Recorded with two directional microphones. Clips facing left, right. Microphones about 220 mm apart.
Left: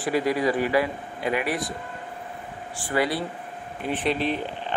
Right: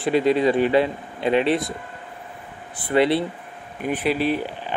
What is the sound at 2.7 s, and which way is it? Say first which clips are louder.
Speech: right 6 dB; 25° right (ahead or behind).